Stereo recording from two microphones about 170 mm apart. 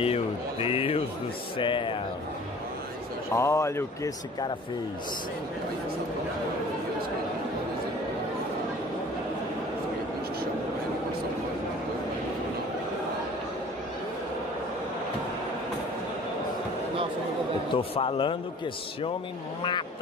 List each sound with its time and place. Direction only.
0.0 s a man's voice: 35° left (ahead or behind)
3.3 s speech: 15° left (ahead or behind)
17.7 s a man's voice: 30° left (ahead or behind)